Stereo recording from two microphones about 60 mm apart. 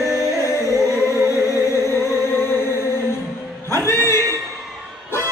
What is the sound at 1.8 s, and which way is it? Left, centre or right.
Music, left.